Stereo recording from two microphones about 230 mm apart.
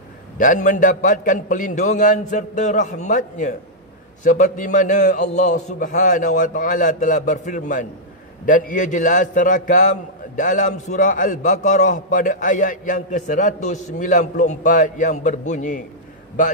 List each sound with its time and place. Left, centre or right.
0.4 s a man's voice: left